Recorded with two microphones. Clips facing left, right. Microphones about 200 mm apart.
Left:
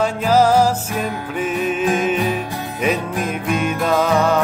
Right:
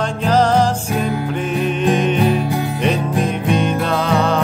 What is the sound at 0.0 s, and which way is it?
Music, 5° left (ahead or behind).